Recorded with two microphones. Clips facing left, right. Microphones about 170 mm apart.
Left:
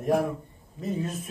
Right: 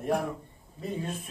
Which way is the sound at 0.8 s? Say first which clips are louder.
Left 4 dB; 35° right (ahead or behind).